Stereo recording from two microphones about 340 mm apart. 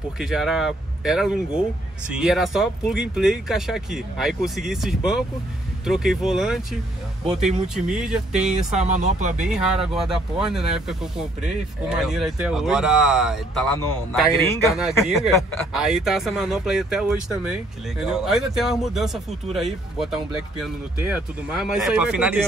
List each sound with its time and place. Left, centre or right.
0.2 s speech: centre
8.7 s speech: right
9.5 s speech: centre